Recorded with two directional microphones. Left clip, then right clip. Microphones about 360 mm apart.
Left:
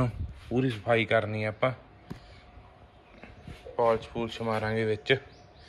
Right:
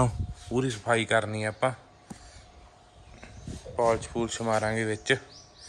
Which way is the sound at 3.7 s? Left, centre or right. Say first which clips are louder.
Even; centre.